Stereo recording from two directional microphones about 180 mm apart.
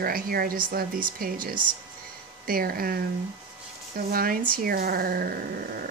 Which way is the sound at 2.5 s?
55° right (ahead or behind).